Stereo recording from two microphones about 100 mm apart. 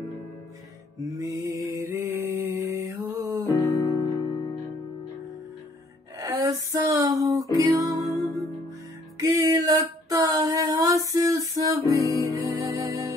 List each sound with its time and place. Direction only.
1.1 s mantra: 35° right (ahead or behind)
2.5 s music: 30° right (ahead or behind)
3.5 s music: 40° left (ahead or behind)
6.1 s music: 35° right (ahead or behind)
9.2 s female singing: 35° right (ahead or behind)
11.8 s music: 35° left (ahead or behind)
12.1 s music: 35° right (ahead or behind)